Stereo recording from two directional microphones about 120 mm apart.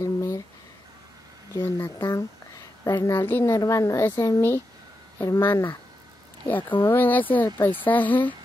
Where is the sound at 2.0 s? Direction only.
30° left (ahead or behind).